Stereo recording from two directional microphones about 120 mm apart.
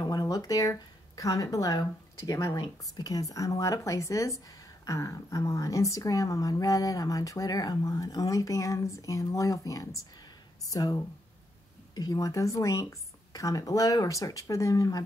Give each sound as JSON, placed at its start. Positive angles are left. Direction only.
{"t": 0.0, "sound": "speech", "side_deg": 30}